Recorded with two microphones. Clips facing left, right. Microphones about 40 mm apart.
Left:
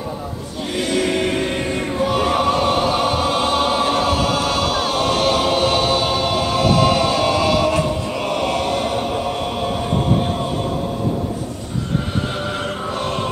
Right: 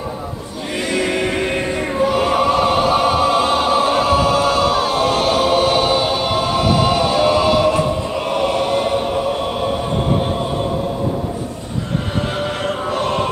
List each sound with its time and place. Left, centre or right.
0.8 s music: centre
2.0 s choir: centre
8.3 s chant: centre